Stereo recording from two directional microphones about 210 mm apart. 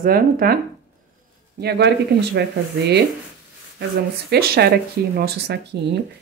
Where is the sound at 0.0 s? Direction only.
45° right (ahead or behind).